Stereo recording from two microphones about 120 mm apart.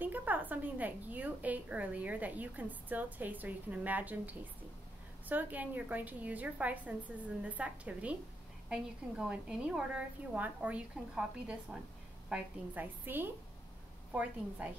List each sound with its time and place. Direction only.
0.0 s a woman's voice: 15° right (ahead or behind)
9.2 s a woman's voice: 5° right (ahead or behind)